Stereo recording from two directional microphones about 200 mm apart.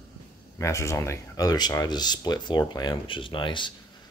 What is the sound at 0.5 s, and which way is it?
Speech, 15° left (ahead or behind).